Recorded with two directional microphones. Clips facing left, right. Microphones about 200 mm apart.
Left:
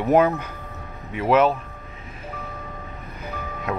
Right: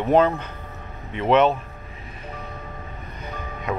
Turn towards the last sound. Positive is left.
turn(degrees=0)  # may be behind; listen again after turning